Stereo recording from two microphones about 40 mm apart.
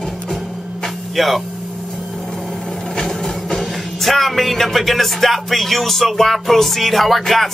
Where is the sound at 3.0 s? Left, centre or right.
Centre.